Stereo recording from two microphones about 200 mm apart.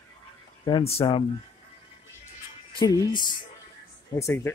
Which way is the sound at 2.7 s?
20° left (ahead or behind).